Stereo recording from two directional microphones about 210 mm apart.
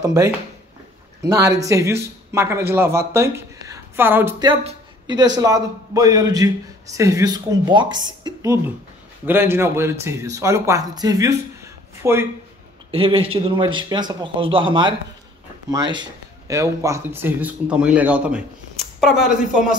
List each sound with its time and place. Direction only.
0.0 s speech: 15° right (ahead or behind)
1.6 s speech: 15° right (ahead or behind)
12.9 s speech: 25° right (ahead or behind); by 19.3 s centre (ahead or behind)